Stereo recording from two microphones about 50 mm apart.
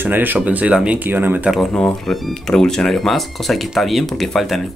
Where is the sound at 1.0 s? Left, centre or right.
Right.